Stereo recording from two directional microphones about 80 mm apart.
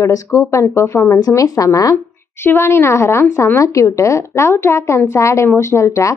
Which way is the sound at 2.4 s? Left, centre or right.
Left.